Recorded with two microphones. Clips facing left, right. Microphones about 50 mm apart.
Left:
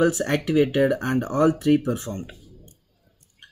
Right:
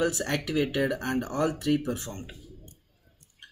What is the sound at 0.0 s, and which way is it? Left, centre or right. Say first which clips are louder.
Speech: left 7 dB; left.